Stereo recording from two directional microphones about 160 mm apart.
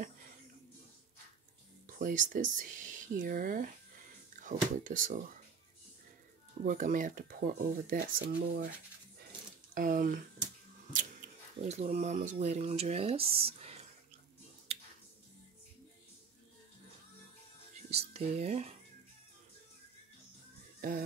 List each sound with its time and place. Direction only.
1.9 s speech: 55° right (ahead or behind)
6.6 s speech: 60° right (ahead or behind); by 8.7 s 80° right
9.8 s speech: 60° right (ahead or behind); by 13.5 s 35° right (ahead or behind)
13.6 s whispering: 40° right (ahead or behind)
17.8 s speech: 40° right (ahead or behind)